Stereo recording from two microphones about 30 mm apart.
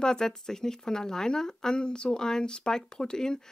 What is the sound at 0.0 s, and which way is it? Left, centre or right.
A woman's voice, left.